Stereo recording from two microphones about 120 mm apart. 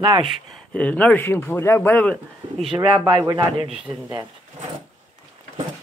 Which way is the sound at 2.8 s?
40° right (ahead or behind).